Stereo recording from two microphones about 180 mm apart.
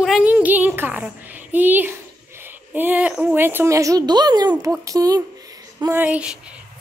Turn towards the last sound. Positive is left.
turn(degrees=-5)  # may be behind; listen again after turning